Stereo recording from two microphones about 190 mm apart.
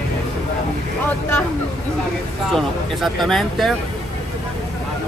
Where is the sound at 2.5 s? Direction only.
Centre (ahead or behind).